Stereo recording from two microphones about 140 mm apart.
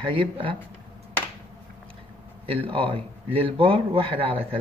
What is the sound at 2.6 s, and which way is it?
A man's voice, 40° right (ahead or behind).